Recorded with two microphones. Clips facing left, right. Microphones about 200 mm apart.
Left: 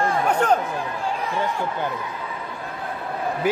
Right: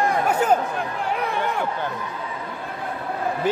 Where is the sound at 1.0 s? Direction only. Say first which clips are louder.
Even; 65° right (ahead or behind).